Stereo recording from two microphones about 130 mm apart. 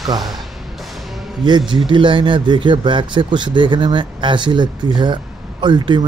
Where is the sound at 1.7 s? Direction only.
35° right (ahead or behind).